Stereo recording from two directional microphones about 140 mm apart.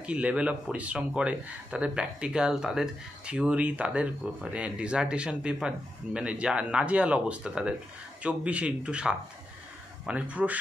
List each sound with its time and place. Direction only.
0.0 s speech: 10° right (ahead or behind)